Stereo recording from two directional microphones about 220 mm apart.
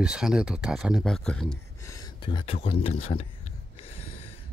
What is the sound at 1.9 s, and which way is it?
Speech, 20° left (ahead or behind).